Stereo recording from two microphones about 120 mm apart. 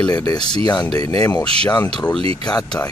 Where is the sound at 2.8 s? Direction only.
15° left (ahead or behind).